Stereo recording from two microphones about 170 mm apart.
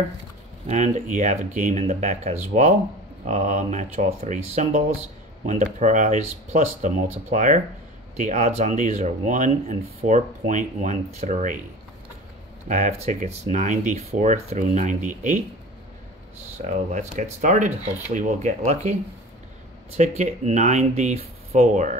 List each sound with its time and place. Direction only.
0.7 s speech: 40° right (ahead or behind)
12.6 s speech: 45° right (ahead or behind)
16.5 s speech: 45° right (ahead or behind)
20.0 s speech: 40° right (ahead or behind)